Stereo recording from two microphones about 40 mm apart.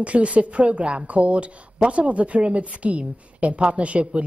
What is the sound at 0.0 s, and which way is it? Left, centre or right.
Speech, right.